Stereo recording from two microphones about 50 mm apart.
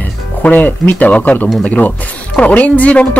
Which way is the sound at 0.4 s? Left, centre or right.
Left.